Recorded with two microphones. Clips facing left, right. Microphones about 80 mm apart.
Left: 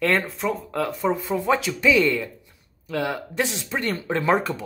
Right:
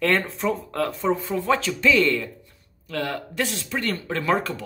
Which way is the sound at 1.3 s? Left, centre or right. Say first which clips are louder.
Left 1 dB; centre.